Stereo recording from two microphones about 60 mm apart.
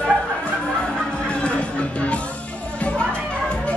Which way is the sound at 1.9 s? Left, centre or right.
Left.